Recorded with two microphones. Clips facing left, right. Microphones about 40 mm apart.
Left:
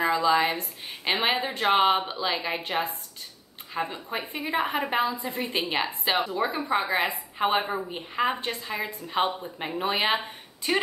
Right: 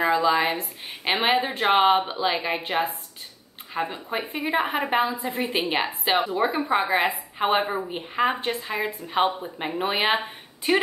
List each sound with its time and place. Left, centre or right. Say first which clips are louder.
0.0 s a woman's voice: right 2 dB; centre